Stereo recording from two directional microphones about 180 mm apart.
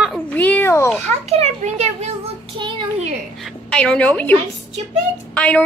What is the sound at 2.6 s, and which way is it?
Speech, 25° right (ahead or behind).